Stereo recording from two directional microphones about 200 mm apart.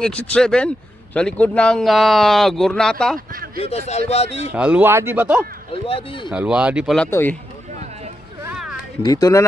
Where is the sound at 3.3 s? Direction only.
45° right (ahead or behind).